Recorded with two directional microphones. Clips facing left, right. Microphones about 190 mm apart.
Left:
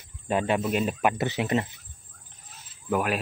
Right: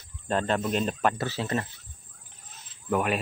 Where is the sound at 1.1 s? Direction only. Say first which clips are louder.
Left 4 dB; 20° left (ahead or behind).